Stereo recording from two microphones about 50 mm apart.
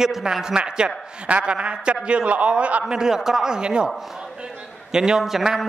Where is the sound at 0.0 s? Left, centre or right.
Centre.